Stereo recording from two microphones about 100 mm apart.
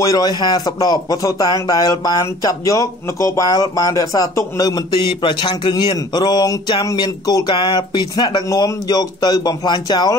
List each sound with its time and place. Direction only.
0.0 s a man's voice: 35° left (ahead or behind)